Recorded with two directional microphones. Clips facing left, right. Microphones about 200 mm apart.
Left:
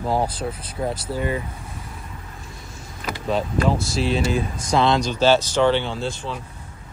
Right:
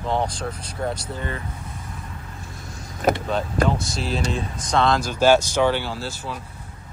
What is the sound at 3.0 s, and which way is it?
Speech, 45° right (ahead or behind).